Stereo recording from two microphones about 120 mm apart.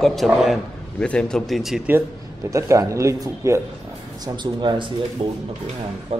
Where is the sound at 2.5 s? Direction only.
25° right (ahead or behind).